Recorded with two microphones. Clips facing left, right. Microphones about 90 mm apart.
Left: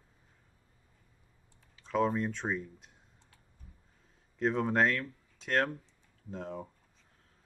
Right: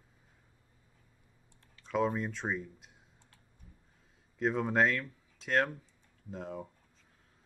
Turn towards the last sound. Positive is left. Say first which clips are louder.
# left 1 dB
turn(degrees=0)  # may be behind; listen again after turning